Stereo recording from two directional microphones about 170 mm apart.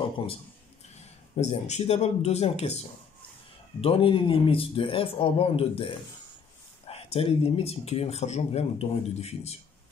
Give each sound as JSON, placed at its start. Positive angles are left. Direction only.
{"t": 1.3, "sound": "speech", "side_deg": 40}
{"t": 3.8, "sound": "speech", "side_deg": 35}